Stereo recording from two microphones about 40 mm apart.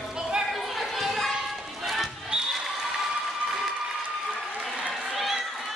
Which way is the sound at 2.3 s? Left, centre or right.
Right.